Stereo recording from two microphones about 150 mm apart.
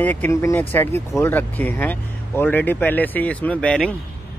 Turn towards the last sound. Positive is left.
turn(degrees=5)  # may be behind; listen again after turning